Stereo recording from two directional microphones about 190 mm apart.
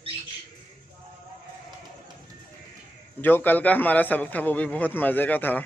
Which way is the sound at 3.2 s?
10° left (ahead or behind).